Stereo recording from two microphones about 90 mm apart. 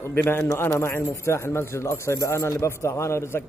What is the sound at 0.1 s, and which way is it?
A man's voice, 25° left (ahead or behind).